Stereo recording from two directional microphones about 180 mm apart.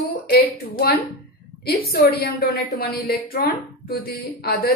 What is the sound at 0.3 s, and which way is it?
A woman's voice, 60° left (ahead or behind).